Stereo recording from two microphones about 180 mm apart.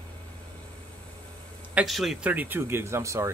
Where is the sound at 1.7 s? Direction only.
Centre (ahead or behind).